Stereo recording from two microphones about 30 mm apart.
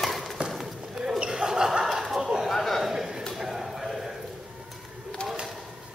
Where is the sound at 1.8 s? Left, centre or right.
Centre.